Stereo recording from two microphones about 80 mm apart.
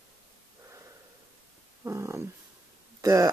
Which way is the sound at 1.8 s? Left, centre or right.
Right.